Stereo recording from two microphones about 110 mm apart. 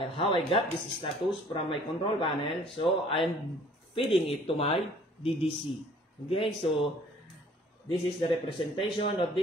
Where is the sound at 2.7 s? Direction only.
55° left (ahead or behind).